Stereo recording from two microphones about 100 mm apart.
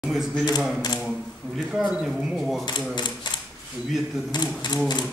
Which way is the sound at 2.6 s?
45° left (ahead or behind).